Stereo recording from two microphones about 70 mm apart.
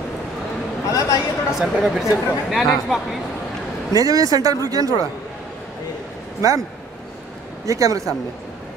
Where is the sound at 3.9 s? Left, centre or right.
Right.